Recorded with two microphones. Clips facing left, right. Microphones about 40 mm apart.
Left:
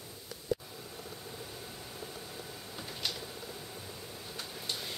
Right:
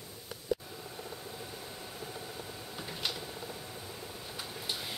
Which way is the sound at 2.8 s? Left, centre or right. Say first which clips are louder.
Right 1 dB; centre.